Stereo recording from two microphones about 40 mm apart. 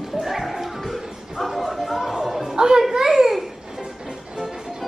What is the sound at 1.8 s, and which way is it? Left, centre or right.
Chatter, centre.